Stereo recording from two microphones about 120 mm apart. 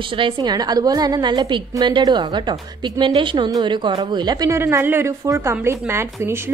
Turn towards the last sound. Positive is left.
turn(degrees=-20)  # may be behind; listen again after turning